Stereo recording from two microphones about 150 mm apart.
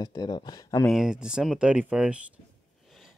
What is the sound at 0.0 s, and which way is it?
Speech, 25° left (ahead or behind).